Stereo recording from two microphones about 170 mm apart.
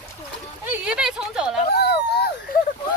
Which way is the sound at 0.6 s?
5° right (ahead or behind).